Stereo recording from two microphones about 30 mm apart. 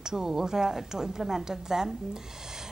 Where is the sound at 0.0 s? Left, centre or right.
Centre.